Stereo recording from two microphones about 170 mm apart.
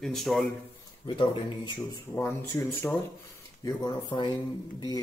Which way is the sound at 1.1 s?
25° left (ahead or behind).